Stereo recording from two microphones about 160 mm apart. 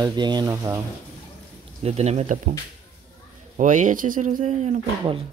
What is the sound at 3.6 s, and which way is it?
Speech, 50° right (ahead or behind).